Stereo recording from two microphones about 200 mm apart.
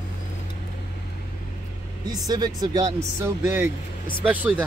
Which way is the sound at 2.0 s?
20° right (ahead or behind).